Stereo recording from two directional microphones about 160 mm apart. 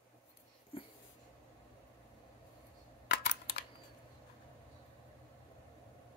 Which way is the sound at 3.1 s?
85° left.